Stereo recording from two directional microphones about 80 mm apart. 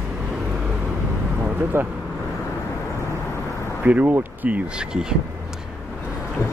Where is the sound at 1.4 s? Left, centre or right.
Right.